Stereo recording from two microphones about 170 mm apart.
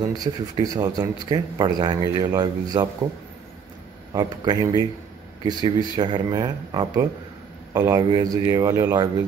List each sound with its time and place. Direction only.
0.0 s speech: 20° right (ahead or behind)
4.1 s speech: 20° right (ahead or behind)